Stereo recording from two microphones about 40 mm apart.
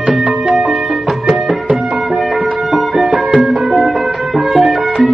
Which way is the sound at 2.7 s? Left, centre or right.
Centre.